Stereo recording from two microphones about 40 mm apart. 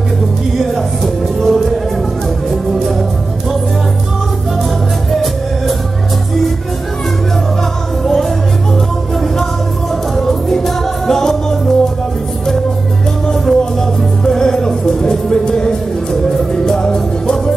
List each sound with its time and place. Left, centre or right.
0.7 s music: centre
5.1 s music: centre
8.0 s music: centre
10.1 s music: centre
13.3 s music: centre